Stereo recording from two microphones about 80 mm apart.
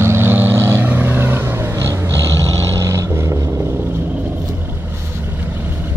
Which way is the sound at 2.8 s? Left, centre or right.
Right.